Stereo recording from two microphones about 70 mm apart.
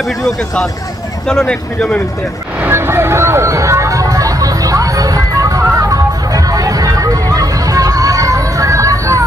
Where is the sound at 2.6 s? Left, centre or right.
Right.